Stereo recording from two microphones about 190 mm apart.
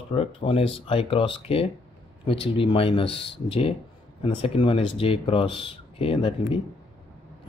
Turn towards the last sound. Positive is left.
turn(degrees=30)  # may be behind; listen again after turning